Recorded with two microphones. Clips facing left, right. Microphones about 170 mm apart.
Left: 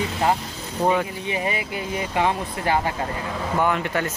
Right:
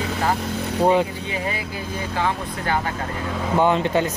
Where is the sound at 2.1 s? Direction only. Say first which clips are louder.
Left 1 dB; 25° left (ahead or behind).